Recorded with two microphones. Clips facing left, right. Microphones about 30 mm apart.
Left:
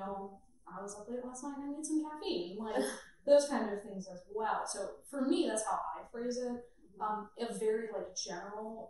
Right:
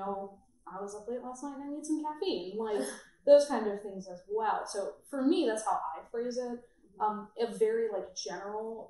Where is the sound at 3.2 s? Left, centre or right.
Centre.